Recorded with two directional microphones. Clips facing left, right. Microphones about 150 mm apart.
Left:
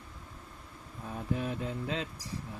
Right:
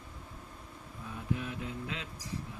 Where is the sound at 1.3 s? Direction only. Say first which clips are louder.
Left 4 dB; 35° left (ahead or behind).